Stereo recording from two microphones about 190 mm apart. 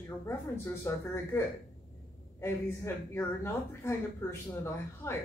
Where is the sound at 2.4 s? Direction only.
15° left (ahead or behind).